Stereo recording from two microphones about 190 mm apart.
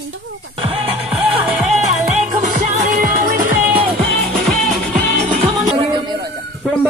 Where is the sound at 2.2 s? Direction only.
40° right (ahead or behind).